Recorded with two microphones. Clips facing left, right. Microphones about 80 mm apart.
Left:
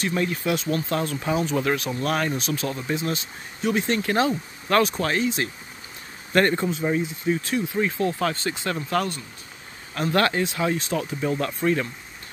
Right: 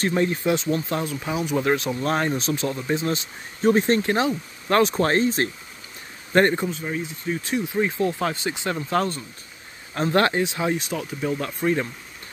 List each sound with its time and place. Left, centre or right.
0.1 s speech: right
1.6 s speech: right
3.6 s speech: right
4.0 s speech: right
4.9 s speech: right
6.3 s speech: right
6.8 s speech: centre
7.4 s speech: right
8.8 s speech: right
10.9 s speech: centre
11.6 s speech: centre